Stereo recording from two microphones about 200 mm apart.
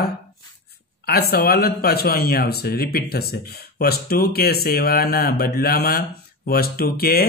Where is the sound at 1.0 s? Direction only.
50° left (ahead or behind).